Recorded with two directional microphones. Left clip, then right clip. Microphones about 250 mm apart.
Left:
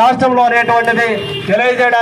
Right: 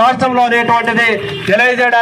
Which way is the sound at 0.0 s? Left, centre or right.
Right.